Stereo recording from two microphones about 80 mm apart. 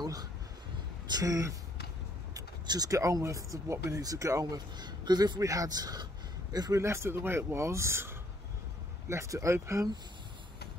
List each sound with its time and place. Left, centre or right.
0.0 s a sound: right
1.1 s speech: right
2.6 s speech: right
4.7 s speech: right
5.4 s speech: right
6.8 s speech: right